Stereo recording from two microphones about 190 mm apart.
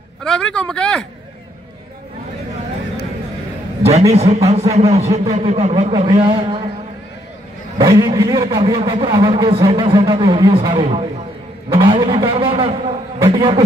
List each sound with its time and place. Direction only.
0.2 s speech: 5° left (ahead or behind)
4.1 s a man's voice: 35° right (ahead or behind)
7.8 s a man's voice: 20° right (ahead or behind)